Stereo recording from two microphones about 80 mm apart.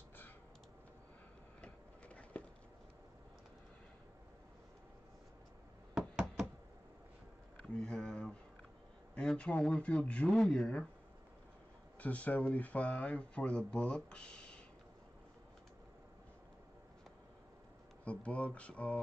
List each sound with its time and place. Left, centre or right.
1.6 s a sound: centre
5.9 s knock: centre
7.8 s a sound: centre
9.4 s speech: centre
12.0 s speech: centre
18.0 s speech: centre